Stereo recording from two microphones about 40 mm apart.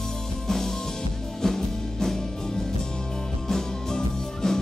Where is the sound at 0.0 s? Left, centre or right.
Centre.